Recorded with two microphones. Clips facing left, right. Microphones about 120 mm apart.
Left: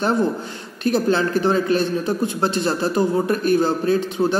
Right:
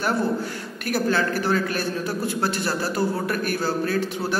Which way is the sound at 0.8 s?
25° left (ahead or behind).